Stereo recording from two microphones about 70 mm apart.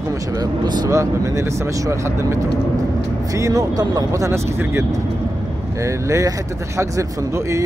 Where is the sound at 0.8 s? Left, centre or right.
Right.